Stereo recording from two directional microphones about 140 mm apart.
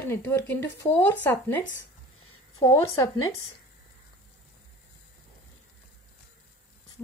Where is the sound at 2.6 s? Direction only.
25° left (ahead or behind).